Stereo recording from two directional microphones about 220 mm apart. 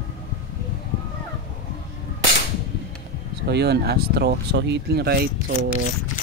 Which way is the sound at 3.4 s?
50° right (ahead or behind).